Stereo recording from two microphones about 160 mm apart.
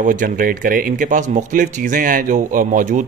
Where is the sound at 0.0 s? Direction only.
55° right (ahead or behind).